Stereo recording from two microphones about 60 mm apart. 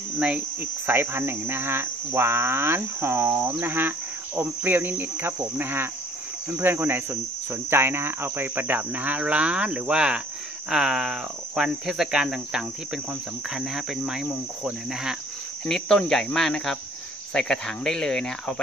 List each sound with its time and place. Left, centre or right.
0.2 s cricket: right
0.8 s cricket: right; by 15.1 s centre
15.7 s speech: centre